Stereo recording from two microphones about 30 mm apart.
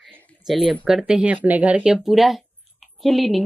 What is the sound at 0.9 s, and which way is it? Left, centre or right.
Speech, centre.